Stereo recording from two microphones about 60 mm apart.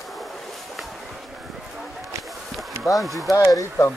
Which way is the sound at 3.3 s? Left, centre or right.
Left.